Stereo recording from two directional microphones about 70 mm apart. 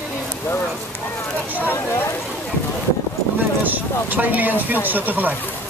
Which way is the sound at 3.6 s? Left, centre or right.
Right.